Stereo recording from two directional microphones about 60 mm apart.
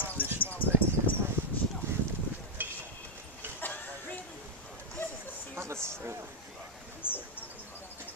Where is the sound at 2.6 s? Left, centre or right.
Right.